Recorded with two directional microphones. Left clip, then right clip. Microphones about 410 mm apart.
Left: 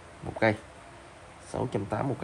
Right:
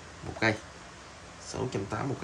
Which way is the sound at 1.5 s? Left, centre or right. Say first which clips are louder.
Left 3 dB; centre.